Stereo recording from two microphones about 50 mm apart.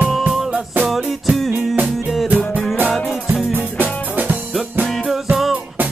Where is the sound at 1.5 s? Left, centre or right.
Right.